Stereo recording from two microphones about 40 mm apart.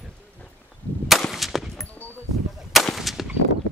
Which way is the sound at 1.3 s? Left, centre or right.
Centre.